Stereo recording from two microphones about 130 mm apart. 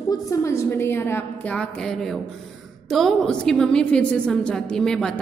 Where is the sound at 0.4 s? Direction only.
20° left (ahead or behind).